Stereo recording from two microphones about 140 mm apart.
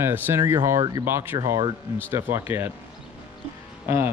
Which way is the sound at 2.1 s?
15° right (ahead or behind).